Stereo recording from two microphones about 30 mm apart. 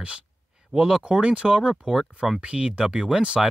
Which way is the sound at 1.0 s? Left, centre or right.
Right.